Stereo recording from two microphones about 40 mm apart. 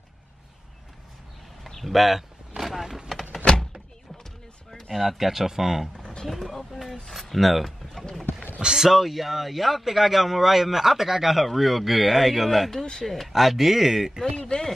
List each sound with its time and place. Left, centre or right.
1.7 s speech: centre
2.6 s vehicle: centre
4.2 s a sound: centre
6.2 s speech: centre
8.0 s clip-clop: centre
8.5 s speech: centre
14.2 s speech: left